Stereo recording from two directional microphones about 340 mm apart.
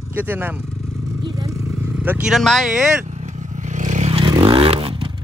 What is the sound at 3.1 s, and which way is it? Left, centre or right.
Vehicle, right.